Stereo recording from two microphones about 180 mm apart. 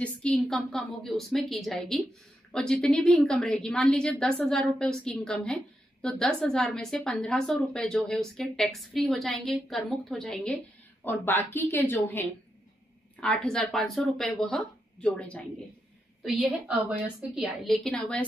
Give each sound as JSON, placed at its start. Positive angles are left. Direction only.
{"t": 0.5, "sound": "a woman's voice", "side_deg": 0}